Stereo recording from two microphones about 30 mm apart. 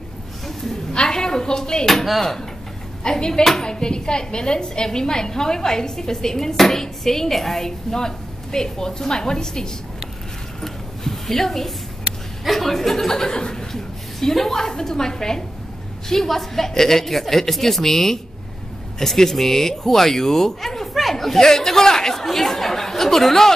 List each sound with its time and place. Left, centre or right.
1.0 s speech: left
1.9 s speech: centre
3.0 s a woman's voice: left; by 7.7 s centre
7.9 s a woman's voice: centre
10.6 s a sound: centre
12.4 s speech: centre
16.1 s speech: centre